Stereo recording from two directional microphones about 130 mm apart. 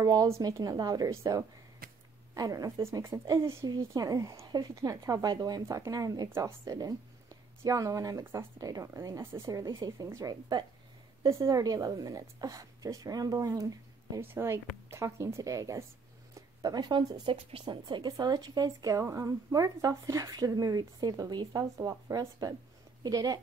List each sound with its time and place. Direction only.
0.0 s a woman's voice: 25° right (ahead or behind)